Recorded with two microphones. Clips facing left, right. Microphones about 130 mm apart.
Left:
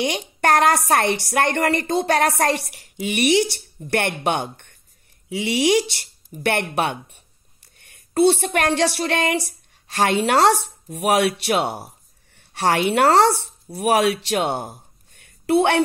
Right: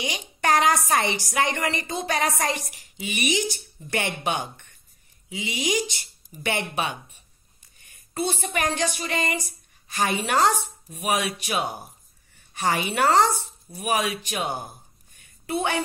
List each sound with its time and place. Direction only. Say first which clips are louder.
0.4 s a woman's voice: left 4 dB; 60° left (ahead or behind)